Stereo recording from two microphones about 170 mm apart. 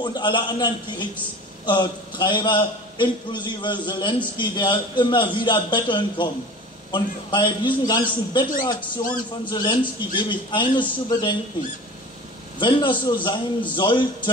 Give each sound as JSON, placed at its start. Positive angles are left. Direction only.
{"t": 0.0, "sound": "a man's voice", "side_deg": 25}
{"t": 12.5, "sound": "a man's voice", "side_deg": 30}